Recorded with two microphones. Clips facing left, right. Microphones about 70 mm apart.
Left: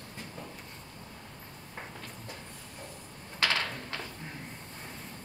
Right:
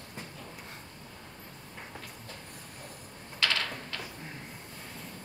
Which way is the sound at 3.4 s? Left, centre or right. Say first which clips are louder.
Left 1 dB; centre.